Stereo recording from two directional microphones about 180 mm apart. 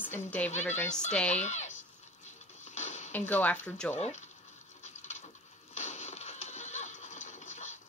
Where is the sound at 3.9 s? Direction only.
35° left (ahead or behind).